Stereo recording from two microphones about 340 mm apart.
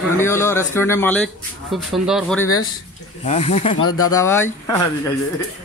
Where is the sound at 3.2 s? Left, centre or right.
Centre.